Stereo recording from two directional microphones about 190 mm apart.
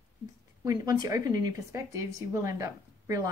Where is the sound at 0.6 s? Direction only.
20° right (ahead or behind).